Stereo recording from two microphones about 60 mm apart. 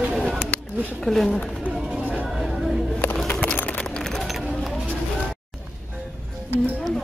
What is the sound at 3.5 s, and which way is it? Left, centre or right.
Run, left.